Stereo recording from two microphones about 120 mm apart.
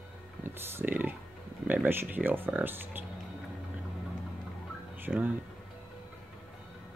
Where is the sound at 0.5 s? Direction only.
20° right (ahead or behind).